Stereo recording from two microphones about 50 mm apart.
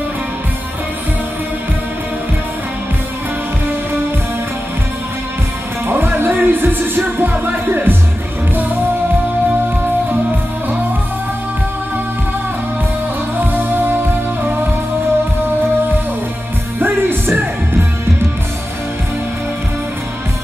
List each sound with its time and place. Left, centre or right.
5.9 s music: right
13.4 s music: right
16.8 s music: right